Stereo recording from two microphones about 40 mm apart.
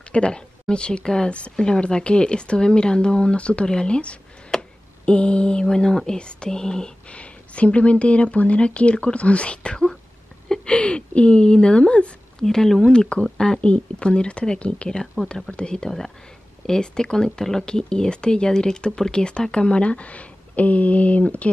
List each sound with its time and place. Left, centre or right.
0.0 s a woman's voice: left
1.3 s speech: left
7.1 s speech: left
12.4 s speech: centre
14.9 s speech: centre; by 21.5 s left